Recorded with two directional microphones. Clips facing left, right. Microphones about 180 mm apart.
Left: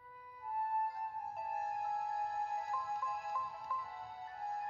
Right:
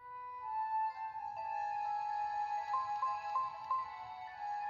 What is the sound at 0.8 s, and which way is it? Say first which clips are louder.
Music: even; 45° left (ahead or behind).